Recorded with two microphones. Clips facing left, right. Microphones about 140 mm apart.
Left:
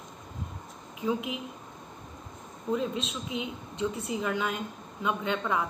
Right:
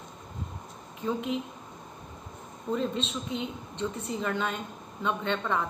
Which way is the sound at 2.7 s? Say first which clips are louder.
Even; 5° left (ahead or behind).